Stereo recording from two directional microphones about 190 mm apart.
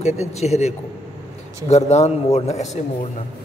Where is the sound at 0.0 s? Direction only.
35° left (ahead or behind).